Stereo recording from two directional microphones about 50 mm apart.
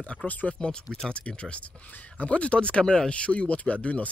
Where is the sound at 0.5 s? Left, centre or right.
Centre.